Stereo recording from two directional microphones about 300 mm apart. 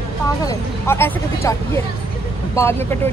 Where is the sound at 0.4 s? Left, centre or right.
Centre.